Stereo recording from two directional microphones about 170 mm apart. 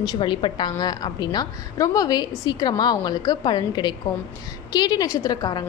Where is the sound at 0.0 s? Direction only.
25° left (ahead or behind).